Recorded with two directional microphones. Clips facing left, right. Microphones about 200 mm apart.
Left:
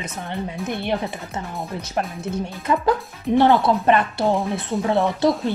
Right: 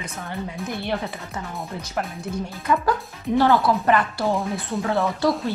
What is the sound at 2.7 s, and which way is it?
Speech, 25° left (ahead or behind).